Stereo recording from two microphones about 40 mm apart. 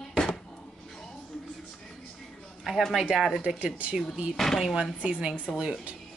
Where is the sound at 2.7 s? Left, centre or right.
Centre.